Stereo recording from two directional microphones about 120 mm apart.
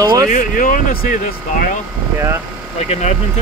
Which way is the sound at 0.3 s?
90° left.